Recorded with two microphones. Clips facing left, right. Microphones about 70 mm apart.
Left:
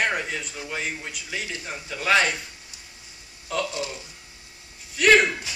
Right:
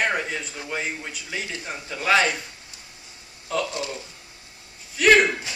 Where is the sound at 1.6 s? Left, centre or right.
Centre.